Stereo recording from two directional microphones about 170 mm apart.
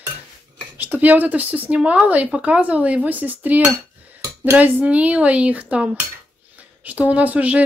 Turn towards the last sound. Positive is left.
turn(degrees=-10)  # may be behind; listen again after turning